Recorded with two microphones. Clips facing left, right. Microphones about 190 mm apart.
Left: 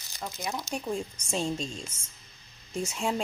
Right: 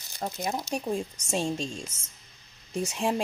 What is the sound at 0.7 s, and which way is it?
Speech, 20° right (ahead or behind).